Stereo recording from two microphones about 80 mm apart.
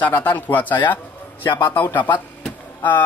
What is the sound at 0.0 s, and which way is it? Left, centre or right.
Speech, left.